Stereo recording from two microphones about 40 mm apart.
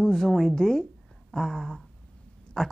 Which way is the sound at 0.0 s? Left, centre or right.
Centre.